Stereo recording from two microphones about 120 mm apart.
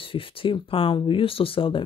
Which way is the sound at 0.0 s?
50° left (ahead or behind).